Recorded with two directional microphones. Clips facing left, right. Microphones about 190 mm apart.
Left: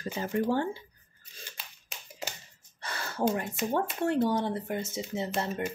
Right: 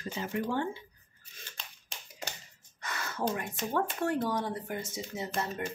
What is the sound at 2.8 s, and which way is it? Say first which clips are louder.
Gasp: left 4 dB; 30° left (ahead or behind).